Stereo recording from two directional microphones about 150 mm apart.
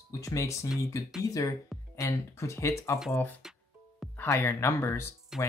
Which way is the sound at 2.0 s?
20° left (ahead or behind).